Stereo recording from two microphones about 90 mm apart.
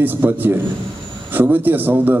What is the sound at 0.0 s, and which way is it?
A man's voice, 20° right (ahead or behind).